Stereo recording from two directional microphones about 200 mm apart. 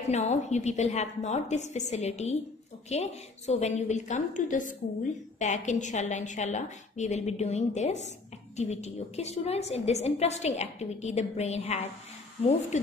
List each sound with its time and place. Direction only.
0.1 s a woman's voice: 35° left (ahead or behind)